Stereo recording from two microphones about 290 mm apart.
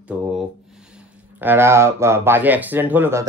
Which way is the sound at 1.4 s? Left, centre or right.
Centre.